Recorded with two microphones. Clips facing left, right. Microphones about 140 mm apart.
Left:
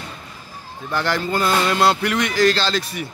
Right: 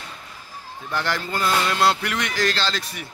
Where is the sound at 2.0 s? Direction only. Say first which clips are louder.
Left 7 dB; 15° left (ahead or behind).